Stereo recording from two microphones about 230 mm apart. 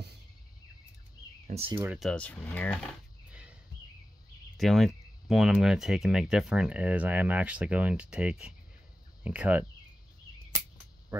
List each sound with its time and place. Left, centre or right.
1.5 s speech: right
1.8 s speech: centre
3.3 s a sound: centre
4.6 s speech: centre